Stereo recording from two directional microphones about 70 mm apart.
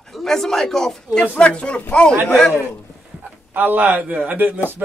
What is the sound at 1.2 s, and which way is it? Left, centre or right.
Speech, centre.